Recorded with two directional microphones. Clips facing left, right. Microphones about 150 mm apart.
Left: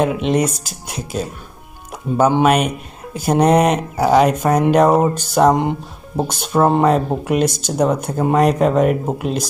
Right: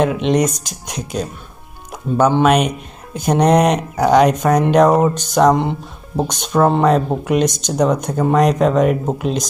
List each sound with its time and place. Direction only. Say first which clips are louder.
0.0 s speech: right 1 dB; 5° left (ahead or behind)